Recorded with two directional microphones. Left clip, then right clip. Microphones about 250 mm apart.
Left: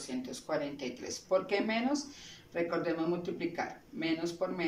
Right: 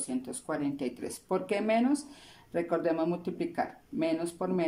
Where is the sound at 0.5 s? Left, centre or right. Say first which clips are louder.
Right 2 dB; right.